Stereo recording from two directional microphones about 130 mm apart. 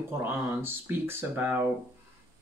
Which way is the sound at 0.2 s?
15° right (ahead or behind).